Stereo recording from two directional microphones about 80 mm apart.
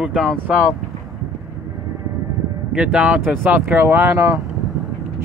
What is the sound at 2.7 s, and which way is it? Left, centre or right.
Speech, centre.